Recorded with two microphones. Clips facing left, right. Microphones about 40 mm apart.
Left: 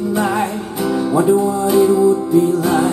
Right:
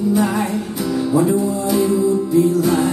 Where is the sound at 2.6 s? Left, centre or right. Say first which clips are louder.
Left 1 dB; left.